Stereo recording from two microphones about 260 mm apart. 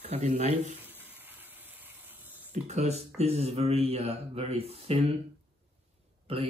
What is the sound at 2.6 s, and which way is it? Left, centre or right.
Speech, right.